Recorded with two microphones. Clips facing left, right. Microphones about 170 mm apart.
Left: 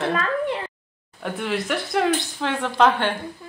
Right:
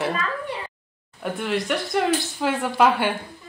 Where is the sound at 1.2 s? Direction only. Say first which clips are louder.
Right 1 dB; centre (ahead or behind).